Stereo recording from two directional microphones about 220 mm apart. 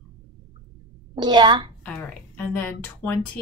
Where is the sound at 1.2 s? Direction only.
20° right (ahead or behind).